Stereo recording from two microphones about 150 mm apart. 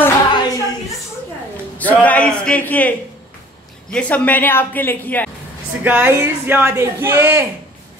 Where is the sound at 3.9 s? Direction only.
10° left (ahead or behind).